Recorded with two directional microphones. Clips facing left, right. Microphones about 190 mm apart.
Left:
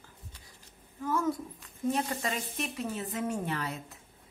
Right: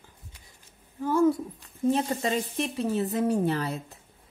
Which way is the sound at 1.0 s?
30° right (ahead or behind).